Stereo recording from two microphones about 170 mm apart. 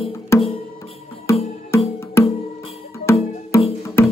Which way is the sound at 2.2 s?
15° left (ahead or behind).